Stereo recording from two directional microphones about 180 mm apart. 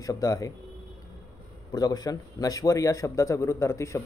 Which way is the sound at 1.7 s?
20° left (ahead or behind).